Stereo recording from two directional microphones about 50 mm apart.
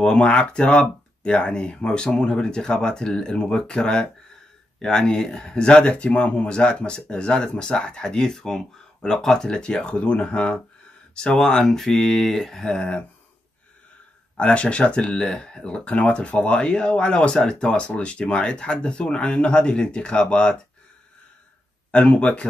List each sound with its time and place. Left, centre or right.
0.0 s speech: centre
12.6 s speech: centre
14.3 s speech: left
21.9 s speech: left